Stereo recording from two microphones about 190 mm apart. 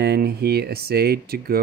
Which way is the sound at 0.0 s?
55° right (ahead or behind).